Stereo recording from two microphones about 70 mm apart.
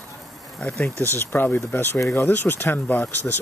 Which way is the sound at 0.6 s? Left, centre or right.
Left.